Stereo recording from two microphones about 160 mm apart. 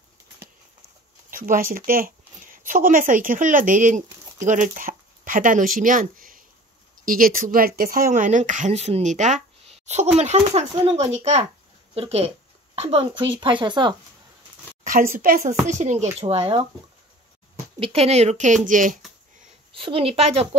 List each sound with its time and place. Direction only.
1.3 s speech: 60° right (ahead or behind); by 13.9 s 30° right (ahead or behind)
14.8 s speech: 60° right (ahead or behind)
15.6 s speech: 45° right (ahead or behind)
17.7 s speech: 35° right (ahead or behind); by 18.9 s 55° right (ahead or behind)
19.7 s speech: 35° right (ahead or behind)